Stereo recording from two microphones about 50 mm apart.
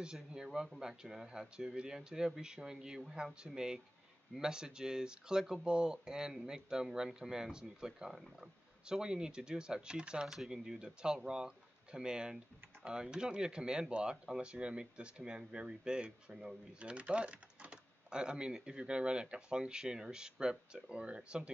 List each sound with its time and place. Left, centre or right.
0.0 s speech: centre